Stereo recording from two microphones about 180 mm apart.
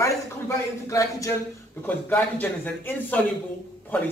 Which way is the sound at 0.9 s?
20° left (ahead or behind).